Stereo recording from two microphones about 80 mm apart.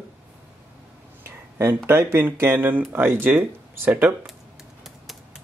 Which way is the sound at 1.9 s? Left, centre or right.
Right.